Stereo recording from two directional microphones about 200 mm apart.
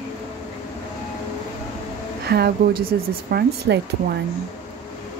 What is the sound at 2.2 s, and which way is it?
Speech, 50° right (ahead or behind).